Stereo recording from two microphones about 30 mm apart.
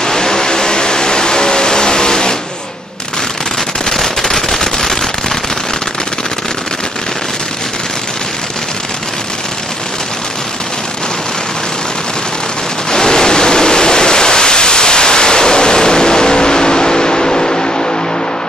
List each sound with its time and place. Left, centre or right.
0.0 s vehicle: centre
3.9 s machine gun: centre
12.9 s a sound: centre